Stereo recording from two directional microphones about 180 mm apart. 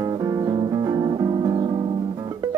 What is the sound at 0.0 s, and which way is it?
Music, 20° right (ahead or behind).